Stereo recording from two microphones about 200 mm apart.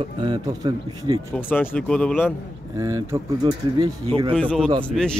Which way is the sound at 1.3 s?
10° left (ahead or behind).